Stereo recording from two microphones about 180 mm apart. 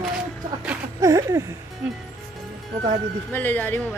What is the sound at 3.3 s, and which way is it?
Speech, 10° left (ahead or behind).